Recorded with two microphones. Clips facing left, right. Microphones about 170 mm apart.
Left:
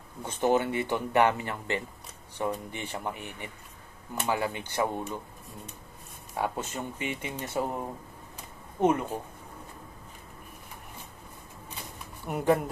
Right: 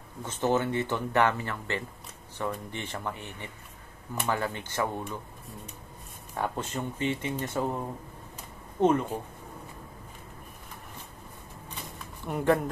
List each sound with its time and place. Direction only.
0.2 s speech: 15° left (ahead or behind)
6.3 s speech: 10° left (ahead or behind)
12.3 s speech: 5° left (ahead or behind)